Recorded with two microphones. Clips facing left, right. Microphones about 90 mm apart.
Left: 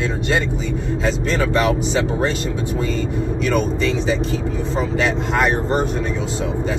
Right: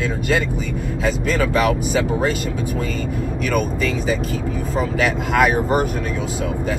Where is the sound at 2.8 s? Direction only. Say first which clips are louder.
Left 2 dB; 50° right (ahead or behind).